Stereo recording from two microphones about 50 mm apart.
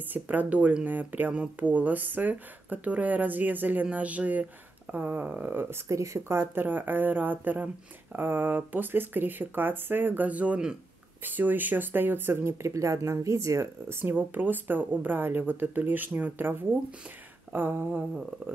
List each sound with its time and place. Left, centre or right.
0.1 s speech: right
5.9 s speech: right
6.2 s speech: right
8.2 s speech: right
12.6 s speech: right
14.0 s speech: right